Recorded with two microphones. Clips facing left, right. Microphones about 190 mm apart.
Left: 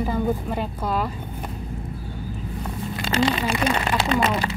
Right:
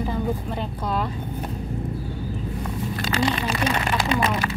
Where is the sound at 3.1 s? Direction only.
25° left (ahead or behind).